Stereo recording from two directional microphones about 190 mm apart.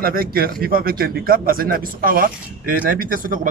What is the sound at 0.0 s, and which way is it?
Speech, 50° right (ahead or behind).